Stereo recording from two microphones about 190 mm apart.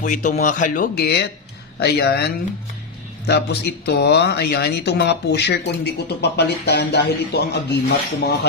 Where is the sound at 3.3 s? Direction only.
60° left (ahead or behind).